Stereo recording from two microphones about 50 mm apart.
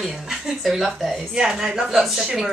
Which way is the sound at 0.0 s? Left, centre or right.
Centre.